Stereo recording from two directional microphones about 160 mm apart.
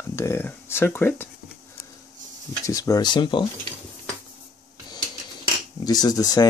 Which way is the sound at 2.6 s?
20° left (ahead or behind).